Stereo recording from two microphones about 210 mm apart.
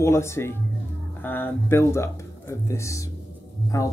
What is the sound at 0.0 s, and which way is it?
Speech, 15° left (ahead or behind).